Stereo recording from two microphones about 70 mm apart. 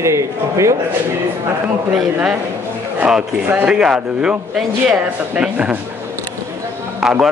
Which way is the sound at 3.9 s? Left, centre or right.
Centre.